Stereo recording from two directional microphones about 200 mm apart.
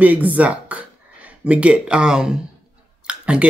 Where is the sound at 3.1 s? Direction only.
5° right (ahead or behind).